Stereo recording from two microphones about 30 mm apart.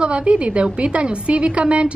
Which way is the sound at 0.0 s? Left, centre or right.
Right.